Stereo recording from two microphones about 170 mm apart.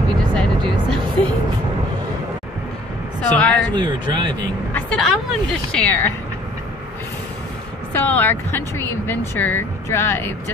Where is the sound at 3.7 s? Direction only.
25° right (ahead or behind).